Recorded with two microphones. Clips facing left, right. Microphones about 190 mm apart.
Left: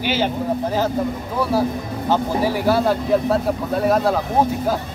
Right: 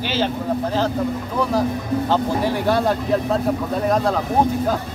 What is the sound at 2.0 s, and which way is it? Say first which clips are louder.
Speech: left 3 dB; 10° left (ahead or behind).